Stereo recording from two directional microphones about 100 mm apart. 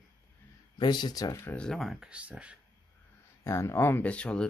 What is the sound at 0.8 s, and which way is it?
Speech, 50° left (ahead or behind).